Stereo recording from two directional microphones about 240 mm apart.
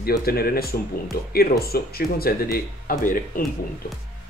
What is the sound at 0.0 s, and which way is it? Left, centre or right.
Speech, left.